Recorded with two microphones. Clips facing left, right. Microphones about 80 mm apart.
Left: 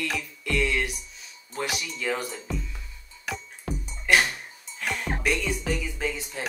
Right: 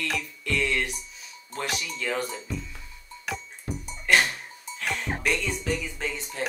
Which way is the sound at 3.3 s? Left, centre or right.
Centre.